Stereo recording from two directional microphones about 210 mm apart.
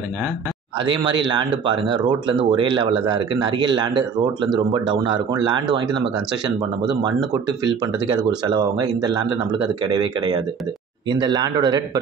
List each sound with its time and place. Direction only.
0.7 s speech: 25° right (ahead or behind)
7.6 s speech: 20° right (ahead or behind)